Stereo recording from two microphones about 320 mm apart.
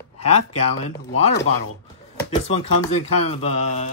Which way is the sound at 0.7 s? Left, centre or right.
Centre.